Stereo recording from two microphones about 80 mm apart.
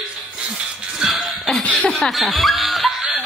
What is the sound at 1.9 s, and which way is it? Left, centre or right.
Snicker, centre.